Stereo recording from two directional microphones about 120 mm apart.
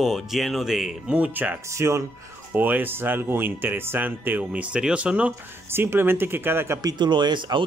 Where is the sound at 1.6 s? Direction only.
25° right (ahead or behind).